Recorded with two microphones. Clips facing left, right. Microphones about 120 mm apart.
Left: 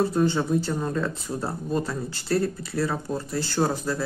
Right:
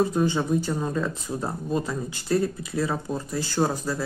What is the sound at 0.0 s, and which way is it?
Speech, 15° right (ahead or behind).